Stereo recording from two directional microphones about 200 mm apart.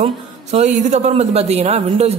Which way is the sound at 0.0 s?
35° right (ahead or behind).